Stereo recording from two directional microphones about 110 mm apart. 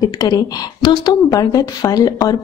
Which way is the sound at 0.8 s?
40° left (ahead or behind).